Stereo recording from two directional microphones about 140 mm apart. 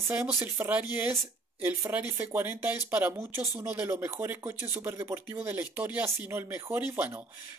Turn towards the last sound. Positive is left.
turn(degrees=-15)  # may be behind; listen again after turning